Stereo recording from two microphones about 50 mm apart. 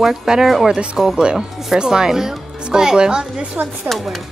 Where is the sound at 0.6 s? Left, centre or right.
Centre.